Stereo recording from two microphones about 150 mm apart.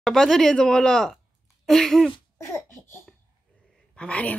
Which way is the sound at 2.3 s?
15° left (ahead or behind).